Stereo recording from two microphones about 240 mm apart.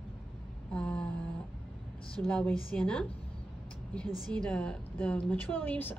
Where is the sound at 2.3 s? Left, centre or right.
Centre.